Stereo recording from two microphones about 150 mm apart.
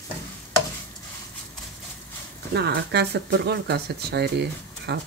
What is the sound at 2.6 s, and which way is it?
Speech, 90° right.